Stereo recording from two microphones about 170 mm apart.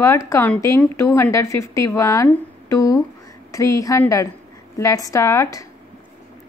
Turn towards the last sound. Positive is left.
turn(degrees=15)  # may be behind; listen again after turning